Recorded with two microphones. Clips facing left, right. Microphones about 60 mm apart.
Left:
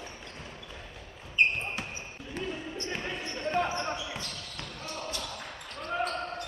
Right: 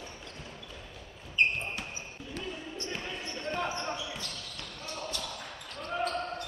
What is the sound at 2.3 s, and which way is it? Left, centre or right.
Basketball bounce, left.